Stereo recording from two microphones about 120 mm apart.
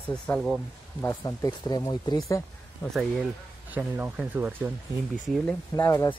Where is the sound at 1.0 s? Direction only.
30° left (ahead or behind).